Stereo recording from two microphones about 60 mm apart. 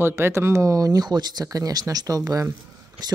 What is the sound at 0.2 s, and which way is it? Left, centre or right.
Speech, right.